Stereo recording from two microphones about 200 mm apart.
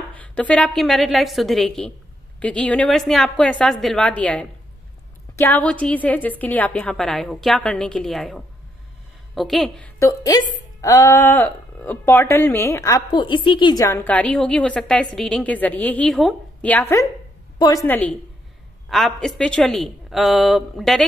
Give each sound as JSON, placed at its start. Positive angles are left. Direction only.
{"t": 0.1, "sound": "a woman's voice", "side_deg": 5}
{"t": 17.8, "sound": "a woman's voice", "side_deg": 10}